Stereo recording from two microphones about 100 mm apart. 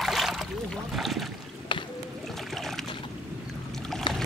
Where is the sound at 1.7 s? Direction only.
55° left (ahead or behind).